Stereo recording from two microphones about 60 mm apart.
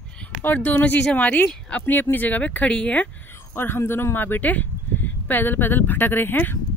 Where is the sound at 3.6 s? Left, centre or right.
Left.